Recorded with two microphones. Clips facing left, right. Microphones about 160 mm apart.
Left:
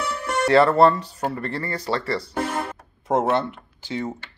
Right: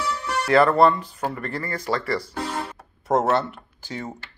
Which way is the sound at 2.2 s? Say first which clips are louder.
Left 3 dB; 55° left (ahead or behind).